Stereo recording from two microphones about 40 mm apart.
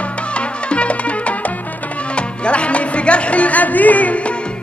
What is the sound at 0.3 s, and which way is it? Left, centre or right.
Music, left.